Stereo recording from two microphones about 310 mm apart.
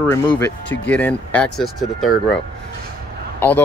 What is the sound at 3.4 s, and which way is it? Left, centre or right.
Speech, centre.